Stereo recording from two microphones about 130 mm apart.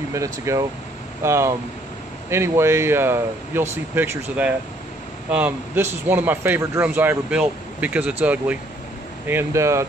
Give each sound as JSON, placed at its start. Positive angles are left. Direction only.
{"t": 0.1, "sound": "a man's voice", "side_deg": -25}